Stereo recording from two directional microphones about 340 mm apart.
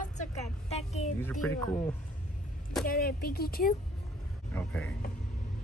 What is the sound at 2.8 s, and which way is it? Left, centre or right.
Speech, left.